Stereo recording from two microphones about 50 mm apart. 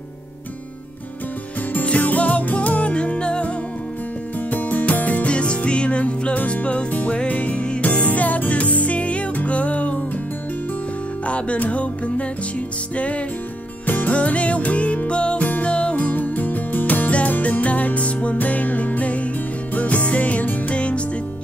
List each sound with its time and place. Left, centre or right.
1.7 s music: left
4.5 s music: left
11.2 s music: left